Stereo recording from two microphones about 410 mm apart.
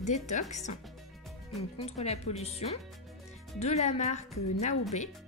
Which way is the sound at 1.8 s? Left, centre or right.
Centre.